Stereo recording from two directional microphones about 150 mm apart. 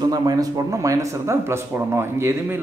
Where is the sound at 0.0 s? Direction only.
25° right (ahead or behind).